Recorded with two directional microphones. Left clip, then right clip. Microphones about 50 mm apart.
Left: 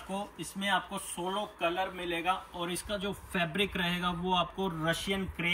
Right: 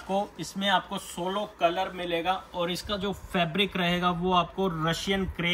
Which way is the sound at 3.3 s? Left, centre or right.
Right.